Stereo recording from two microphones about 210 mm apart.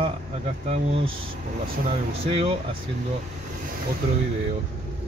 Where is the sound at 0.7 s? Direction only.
25° right (ahead or behind).